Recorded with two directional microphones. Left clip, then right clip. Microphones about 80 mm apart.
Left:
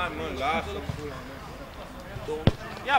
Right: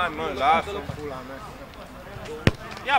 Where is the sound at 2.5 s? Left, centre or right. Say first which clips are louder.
Right 4 dB; right.